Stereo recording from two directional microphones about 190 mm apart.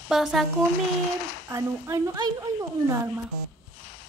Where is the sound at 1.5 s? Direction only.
20° right (ahead or behind).